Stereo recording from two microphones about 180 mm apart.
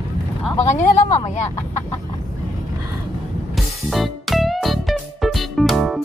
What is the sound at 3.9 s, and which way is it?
Music, centre (ahead or behind).